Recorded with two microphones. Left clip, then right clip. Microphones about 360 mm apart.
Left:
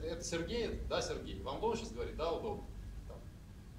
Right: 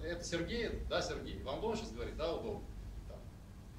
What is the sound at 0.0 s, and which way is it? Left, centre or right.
A man's voice, centre.